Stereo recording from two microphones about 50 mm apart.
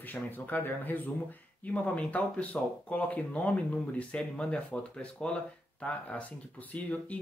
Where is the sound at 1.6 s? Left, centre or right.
Left.